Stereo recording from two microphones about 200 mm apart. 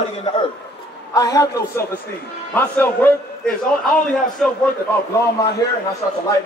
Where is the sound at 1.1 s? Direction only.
20° left (ahead or behind).